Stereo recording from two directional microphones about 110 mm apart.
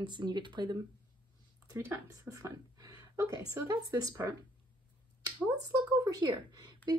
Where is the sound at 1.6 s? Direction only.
20° right (ahead or behind).